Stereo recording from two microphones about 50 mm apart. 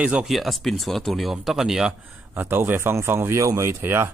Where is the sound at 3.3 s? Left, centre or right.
Right.